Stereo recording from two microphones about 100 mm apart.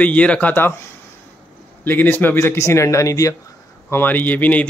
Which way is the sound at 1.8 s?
20° left (ahead or behind).